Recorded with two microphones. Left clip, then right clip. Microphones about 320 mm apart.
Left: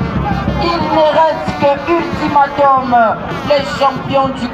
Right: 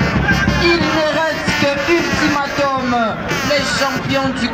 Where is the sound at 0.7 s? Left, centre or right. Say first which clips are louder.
Left 5 dB; left.